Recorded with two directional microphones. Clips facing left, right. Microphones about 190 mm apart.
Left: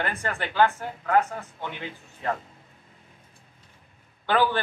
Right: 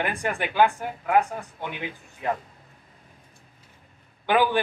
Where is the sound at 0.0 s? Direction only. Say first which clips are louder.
Right 2 dB; 15° right (ahead or behind).